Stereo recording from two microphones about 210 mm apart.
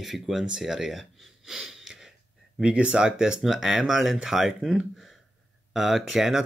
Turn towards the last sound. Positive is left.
turn(degrees=0)  # may be behind; listen again after turning